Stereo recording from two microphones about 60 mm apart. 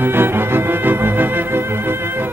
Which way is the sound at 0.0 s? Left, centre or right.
Right.